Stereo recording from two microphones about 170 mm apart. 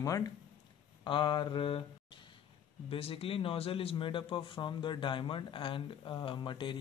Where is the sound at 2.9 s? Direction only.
35° left (ahead or behind).